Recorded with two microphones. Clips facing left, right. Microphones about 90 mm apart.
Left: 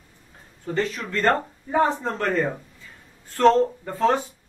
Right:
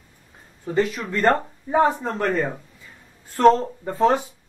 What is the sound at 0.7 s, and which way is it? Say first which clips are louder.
Speech: right 3 dB; 10° right (ahead or behind).